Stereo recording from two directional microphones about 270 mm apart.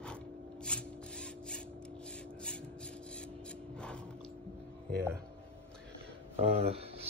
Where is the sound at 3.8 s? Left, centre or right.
Centre.